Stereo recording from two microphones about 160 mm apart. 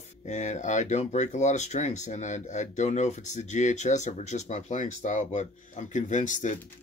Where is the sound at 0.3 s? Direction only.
50° left (ahead or behind).